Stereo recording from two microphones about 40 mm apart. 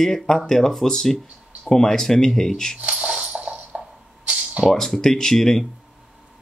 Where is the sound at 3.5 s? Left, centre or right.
Right.